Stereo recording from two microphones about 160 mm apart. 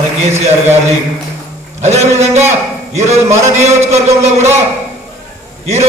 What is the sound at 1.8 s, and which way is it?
A man's voice, 45° right (ahead or behind).